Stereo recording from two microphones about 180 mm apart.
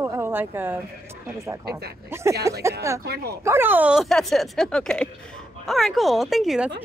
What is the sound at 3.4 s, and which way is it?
Speech, 10° right (ahead or behind).